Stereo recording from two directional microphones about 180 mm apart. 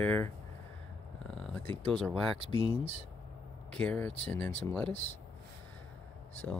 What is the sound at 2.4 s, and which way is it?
Speech, 30° left (ahead or behind).